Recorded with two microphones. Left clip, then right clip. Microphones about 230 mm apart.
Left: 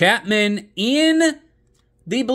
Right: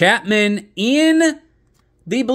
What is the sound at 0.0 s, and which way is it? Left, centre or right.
Speech, centre.